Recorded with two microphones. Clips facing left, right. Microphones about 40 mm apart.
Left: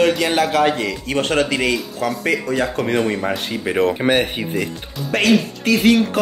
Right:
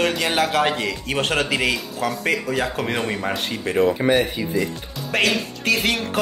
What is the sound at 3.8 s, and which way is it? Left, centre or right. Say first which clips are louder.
Speech: left 1 dB; left.